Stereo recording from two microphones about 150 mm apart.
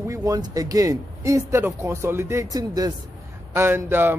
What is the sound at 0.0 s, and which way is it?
Speech, 20° right (ahead or behind).